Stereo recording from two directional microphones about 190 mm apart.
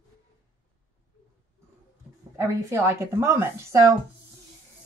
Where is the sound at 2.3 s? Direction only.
15° right (ahead or behind).